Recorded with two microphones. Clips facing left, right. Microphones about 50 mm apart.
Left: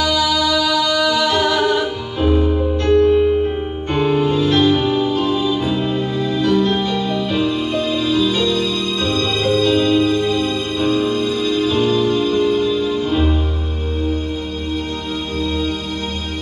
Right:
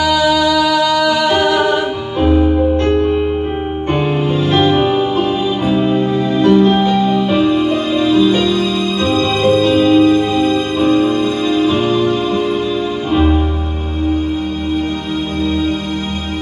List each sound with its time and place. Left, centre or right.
0.0 s music: centre